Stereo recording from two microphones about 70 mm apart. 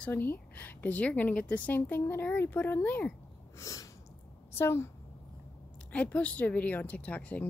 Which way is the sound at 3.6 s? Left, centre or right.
Left.